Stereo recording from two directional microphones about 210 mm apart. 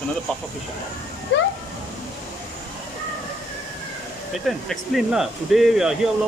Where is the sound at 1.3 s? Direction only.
60° left (ahead or behind).